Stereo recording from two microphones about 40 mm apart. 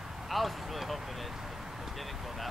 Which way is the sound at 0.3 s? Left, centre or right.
Centre.